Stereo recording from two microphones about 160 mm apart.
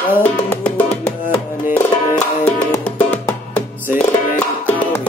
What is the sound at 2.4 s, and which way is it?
Music, 10° left (ahead or behind).